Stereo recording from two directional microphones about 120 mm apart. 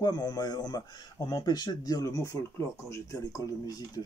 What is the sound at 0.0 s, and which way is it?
Speech, 35° left (ahead or behind).